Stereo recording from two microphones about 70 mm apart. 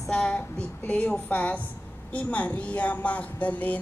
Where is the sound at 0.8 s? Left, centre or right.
Centre.